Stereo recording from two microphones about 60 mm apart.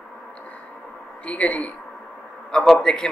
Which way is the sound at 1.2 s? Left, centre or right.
Left.